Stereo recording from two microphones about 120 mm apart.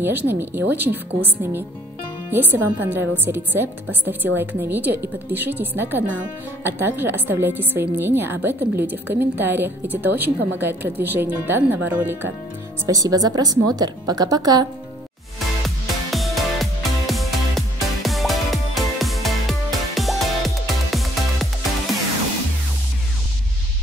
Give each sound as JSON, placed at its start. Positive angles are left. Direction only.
{"t": 0.0, "sound": "a woman's voice", "side_deg": -15}
{"t": 12.8, "sound": "a woman's voice", "side_deg": -30}
{"t": 16.1, "sound": "music", "side_deg": 0}